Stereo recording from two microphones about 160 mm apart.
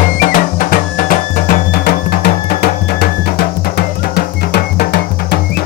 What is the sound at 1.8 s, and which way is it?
Music, 80° left.